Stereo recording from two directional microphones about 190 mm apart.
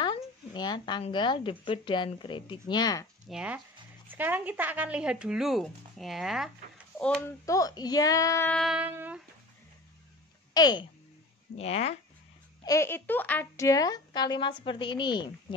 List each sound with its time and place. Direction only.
0.0 s speech: 25° left (ahead or behind)
3.3 s speech: 5° right (ahead or behind)
7.4 s a child's voice: 20° left (ahead or behind)
8.5 s speech: 5° right (ahead or behind)
10.5 s speech: 20° left (ahead or behind)
11.5 s speech: 30° left (ahead or behind)
12.6 s speech: 15° left (ahead or behind)